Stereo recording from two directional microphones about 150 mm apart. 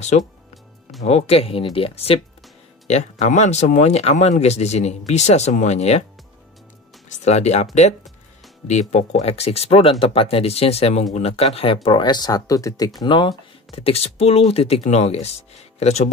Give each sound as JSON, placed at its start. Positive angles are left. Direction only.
{"t": 0.1, "sound": "speech", "side_deg": 50}
{"t": 7.1, "sound": "speech", "side_deg": 45}
{"t": 8.6, "sound": "speech", "side_deg": 50}